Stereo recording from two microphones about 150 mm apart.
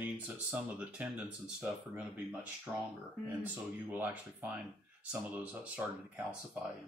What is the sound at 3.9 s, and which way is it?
Speech, 10° right (ahead or behind).